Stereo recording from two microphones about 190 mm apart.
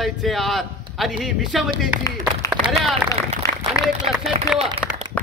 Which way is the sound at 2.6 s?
5° right (ahead or behind).